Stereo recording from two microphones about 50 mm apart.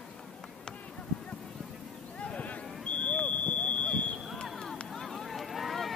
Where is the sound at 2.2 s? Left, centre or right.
Left.